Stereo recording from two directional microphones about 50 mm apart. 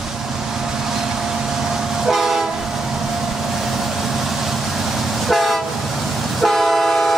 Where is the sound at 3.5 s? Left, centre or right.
Centre.